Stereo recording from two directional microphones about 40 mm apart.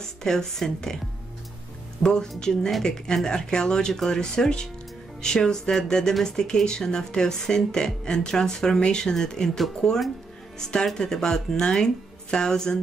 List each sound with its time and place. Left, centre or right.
0.0 s speech: centre
2.0 s speech: centre